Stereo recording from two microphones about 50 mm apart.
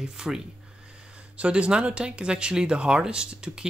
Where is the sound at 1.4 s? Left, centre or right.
Right.